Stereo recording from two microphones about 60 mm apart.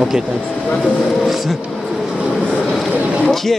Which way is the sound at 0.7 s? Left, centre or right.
Centre.